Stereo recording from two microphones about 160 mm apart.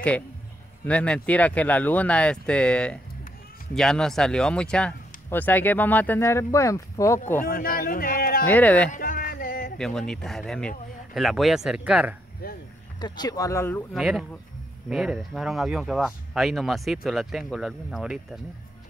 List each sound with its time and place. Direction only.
0.8 s speech: 5° left (ahead or behind)
7.4 s speech: 65° left (ahead or behind)
8.5 s speech: 10° left (ahead or behind)
8.9 s music: 60° left (ahead or behind)
9.8 s speech: 5° left (ahead or behind)
13.0 s speech: 25° left (ahead or behind)
13.9 s speech: centre (ahead or behind)